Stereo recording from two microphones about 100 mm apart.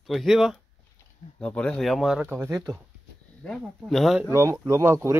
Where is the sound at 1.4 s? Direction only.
10° left (ahead or behind).